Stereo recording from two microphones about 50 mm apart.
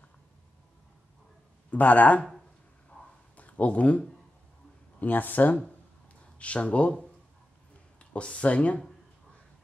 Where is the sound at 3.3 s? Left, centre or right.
Left.